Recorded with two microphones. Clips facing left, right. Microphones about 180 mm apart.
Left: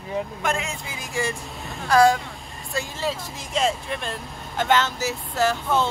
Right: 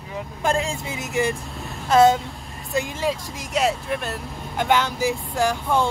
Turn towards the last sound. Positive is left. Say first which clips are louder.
# right 1 dB
turn(degrees=-10)  # may be behind; listen again after turning